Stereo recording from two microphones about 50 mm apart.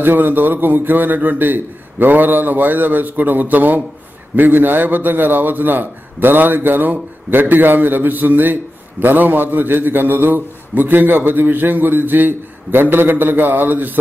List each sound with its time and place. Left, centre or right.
0.0 s a man's voice: right